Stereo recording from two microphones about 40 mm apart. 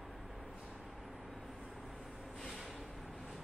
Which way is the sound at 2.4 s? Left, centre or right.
Centre.